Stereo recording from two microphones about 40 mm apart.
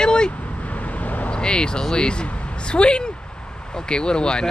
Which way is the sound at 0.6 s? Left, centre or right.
Left.